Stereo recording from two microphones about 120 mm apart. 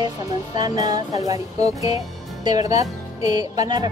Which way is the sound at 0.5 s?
35° right (ahead or behind).